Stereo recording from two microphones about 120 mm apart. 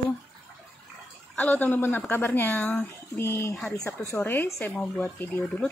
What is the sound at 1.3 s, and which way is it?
Speech, 15° left (ahead or behind).